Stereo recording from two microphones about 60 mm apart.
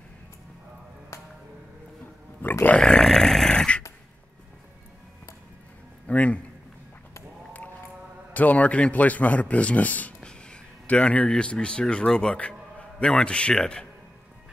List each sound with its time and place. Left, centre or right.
2.4 s grunt: left
2.8 s a sound: centre
6.0 s a man's voice: left
8.3 s a man's voice: left
10.2 s speech: centre